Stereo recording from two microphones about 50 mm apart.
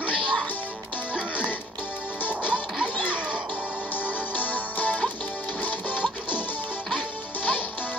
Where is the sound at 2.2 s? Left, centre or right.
Right.